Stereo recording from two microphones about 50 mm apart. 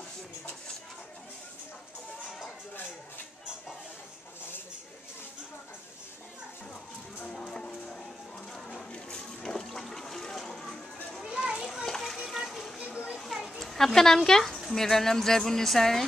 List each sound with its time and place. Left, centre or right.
7.3 s music: centre
8.6 s water: centre
11.2 s children playing: centre
11.7 s children playing: centre
12.9 s children playing: centre
13.2 s a child's voice: centre